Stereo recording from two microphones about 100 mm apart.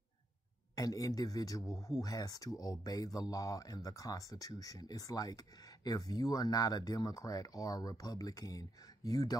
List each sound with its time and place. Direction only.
0.7 s speech: 35° left (ahead or behind)